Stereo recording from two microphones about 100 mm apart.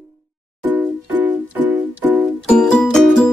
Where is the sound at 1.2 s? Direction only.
15° right (ahead or behind).